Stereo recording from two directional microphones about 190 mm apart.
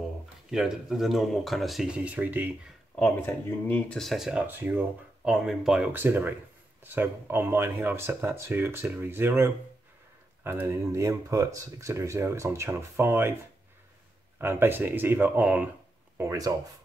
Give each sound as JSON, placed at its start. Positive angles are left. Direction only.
{"t": 0.5, "sound": "speech", "side_deg": -5}
{"t": 3.0, "sound": "speech", "side_deg": 10}
{"t": 14.4, "sound": "speech", "side_deg": -10}